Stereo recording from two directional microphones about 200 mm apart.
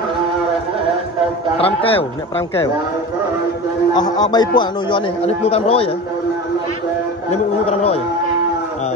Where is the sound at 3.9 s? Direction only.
20° left (ahead or behind).